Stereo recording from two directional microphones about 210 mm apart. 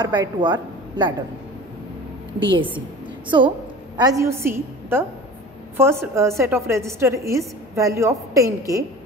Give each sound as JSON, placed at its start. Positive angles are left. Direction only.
{"t": 0.0, "sound": "a woman's voice", "side_deg": -20}
{"t": 2.4, "sound": "a woman's voice", "side_deg": -25}